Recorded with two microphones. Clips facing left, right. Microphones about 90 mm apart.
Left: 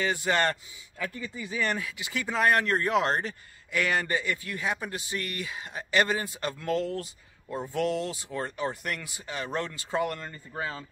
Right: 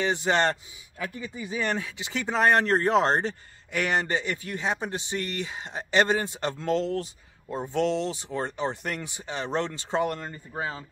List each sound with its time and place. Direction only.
0.0 s speech: 25° right (ahead or behind)